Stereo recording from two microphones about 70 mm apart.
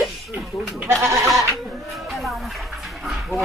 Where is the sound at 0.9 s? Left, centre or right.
Right.